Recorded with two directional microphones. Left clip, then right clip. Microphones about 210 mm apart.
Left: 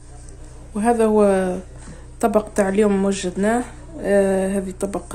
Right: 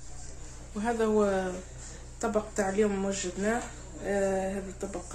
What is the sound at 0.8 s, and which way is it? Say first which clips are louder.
A man's voice: left 11 dB; 35° left (ahead or behind).